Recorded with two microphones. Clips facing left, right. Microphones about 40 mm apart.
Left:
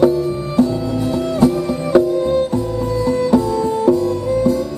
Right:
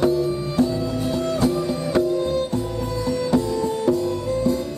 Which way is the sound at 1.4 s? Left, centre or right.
Left.